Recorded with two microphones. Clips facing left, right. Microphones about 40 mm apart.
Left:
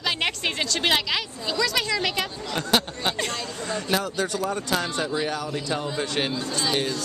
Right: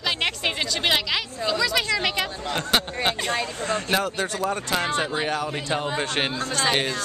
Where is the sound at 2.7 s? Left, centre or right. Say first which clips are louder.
Even; right.